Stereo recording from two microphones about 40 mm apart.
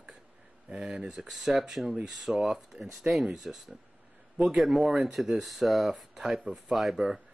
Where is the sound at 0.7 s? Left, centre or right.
Right; by 6.0 s centre.